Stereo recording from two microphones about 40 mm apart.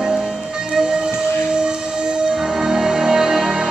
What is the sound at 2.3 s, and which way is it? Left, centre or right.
Music, centre.